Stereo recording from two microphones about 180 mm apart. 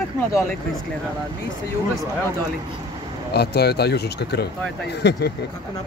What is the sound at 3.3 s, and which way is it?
A man's voice, 65° left (ahead or behind).